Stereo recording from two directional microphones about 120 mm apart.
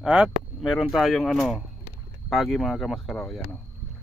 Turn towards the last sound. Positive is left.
turn(degrees=5)  # may be behind; listen again after turning